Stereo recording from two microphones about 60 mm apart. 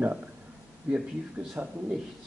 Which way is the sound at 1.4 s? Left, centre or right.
Centre.